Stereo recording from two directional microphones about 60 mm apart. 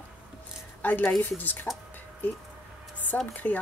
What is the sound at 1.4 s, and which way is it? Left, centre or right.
Speech, left.